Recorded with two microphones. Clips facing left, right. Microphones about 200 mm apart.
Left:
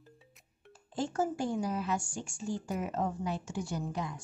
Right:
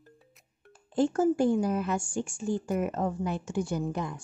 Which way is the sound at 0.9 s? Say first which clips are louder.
Right 8 dB; 55° right (ahead or behind).